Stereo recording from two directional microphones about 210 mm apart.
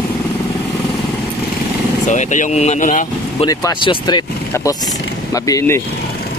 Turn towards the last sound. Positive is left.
turn(degrees=15)  # may be behind; listen again after turning